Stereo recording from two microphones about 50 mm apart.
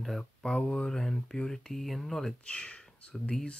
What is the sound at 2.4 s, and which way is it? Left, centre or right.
Speech, left.